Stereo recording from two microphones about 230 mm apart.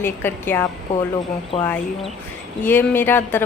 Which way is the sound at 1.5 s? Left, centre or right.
Left.